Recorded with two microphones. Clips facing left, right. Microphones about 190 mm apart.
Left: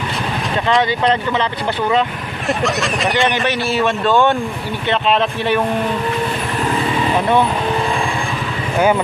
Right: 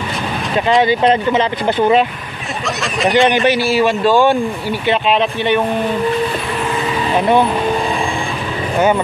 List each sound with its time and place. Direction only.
0.8 s speech: 20° right (ahead or behind)
2.6 s a man's voice: centre (ahead or behind)
8.7 s speech: centre (ahead or behind)